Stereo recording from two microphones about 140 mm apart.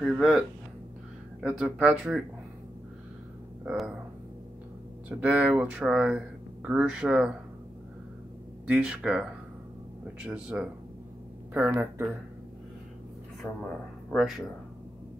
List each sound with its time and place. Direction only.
0.0 s speech: 5° right (ahead or behind)
3.6 s speech: 5° right (ahead or behind)
5.1 s speech: 10° right (ahead or behind)
8.6 s speech: 5° right (ahead or behind)
10.2 s speech: 5° right (ahead or behind)
13.4 s speech: 15° left (ahead or behind)
14.1 s speech: centre (ahead or behind)